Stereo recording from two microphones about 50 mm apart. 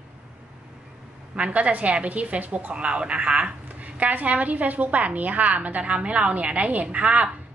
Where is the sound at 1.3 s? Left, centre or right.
Right.